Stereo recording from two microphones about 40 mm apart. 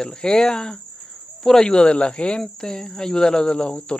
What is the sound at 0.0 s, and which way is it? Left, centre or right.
Speech, centre.